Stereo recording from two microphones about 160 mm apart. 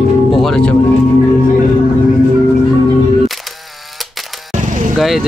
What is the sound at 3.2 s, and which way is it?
Music, centre (ahead or behind).